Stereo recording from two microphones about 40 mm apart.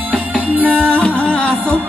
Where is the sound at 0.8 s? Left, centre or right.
Left.